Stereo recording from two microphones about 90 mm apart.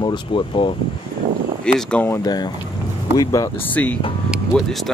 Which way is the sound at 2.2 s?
50° left (ahead or behind).